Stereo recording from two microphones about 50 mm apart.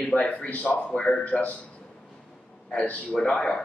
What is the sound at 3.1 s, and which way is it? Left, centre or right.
Speech, centre.